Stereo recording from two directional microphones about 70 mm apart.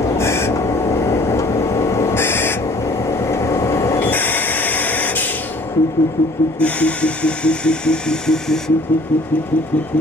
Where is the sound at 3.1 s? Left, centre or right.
Left.